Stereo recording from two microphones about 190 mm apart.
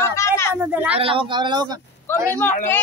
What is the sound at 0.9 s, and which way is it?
Speech, 30° right (ahead or behind).